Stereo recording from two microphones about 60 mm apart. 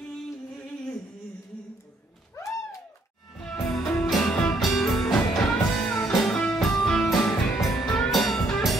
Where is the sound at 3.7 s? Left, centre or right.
Centre.